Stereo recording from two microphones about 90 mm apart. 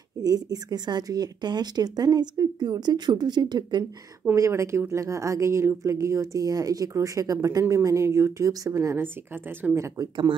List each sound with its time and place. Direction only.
0.2 s speech: 45° right (ahead or behind)
4.4 s speech: 35° right (ahead or behind)